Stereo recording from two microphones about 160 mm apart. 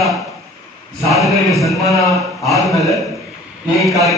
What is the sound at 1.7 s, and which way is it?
Speech, 20° left (ahead or behind).